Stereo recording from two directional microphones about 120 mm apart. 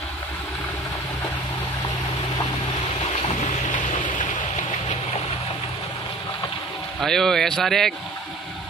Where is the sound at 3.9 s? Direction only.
90° left.